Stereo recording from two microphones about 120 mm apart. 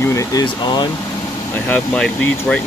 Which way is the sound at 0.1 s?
30° left (ahead or behind).